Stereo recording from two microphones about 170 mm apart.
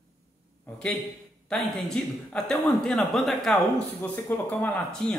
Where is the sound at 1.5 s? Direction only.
Centre (ahead or behind).